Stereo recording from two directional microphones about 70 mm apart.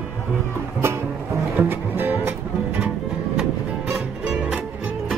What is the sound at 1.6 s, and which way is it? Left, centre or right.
Music, right.